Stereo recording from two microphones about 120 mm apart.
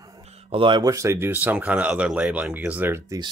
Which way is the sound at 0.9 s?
25° right (ahead or behind).